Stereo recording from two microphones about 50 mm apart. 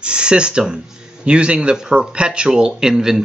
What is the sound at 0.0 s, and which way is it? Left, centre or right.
Speech, right.